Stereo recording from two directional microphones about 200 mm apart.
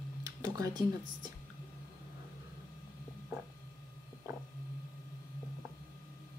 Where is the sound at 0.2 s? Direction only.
20° right (ahead or behind).